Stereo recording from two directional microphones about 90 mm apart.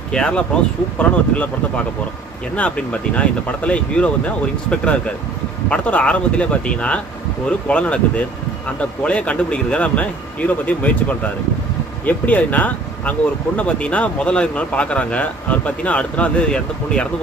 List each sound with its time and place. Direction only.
0.1 s speech: 10° left (ahead or behind)